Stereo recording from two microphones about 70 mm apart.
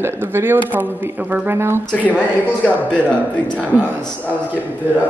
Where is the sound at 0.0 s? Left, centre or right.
Right.